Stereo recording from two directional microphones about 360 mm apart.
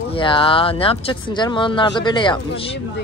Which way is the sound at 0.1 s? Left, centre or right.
Centre.